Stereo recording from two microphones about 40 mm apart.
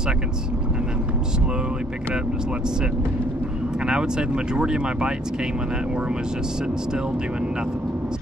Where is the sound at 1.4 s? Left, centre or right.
Right.